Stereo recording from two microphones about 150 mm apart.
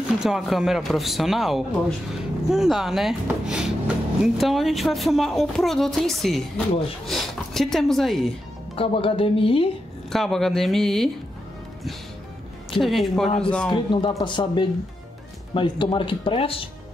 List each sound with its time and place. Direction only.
0.2 s speech: centre (ahead or behind)
8.7 s speech: 35° left (ahead or behind)
10.1 s speech: centre (ahead or behind)
12.7 s speech: centre (ahead or behind)
13.7 s speech: 30° left (ahead or behind)